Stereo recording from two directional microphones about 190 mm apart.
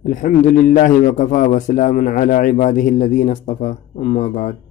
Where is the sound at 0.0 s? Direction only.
45° left (ahead or behind).